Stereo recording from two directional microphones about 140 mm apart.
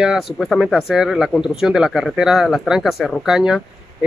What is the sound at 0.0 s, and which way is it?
Speech, 5° right (ahead or behind).